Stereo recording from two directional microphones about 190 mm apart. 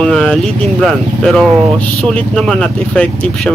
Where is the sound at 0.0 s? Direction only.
Centre (ahead or behind).